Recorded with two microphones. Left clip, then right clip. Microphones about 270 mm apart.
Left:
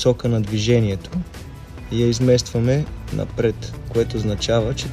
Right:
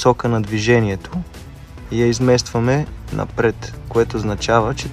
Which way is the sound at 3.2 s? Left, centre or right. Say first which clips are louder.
Right 3 dB; centre.